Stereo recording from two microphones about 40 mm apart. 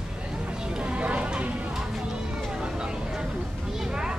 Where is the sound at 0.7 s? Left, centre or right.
Right.